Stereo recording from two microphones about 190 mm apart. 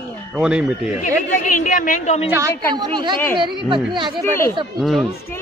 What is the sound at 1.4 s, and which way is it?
Speech, 45° left (ahead or behind).